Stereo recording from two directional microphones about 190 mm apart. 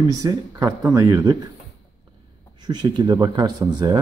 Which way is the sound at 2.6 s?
20° right (ahead or behind).